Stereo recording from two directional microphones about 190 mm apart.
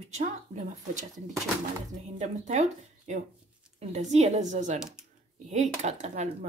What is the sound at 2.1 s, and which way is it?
Speech, 35° right (ahead or behind).